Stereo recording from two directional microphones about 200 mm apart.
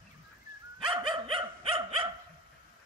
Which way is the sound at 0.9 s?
25° right (ahead or behind).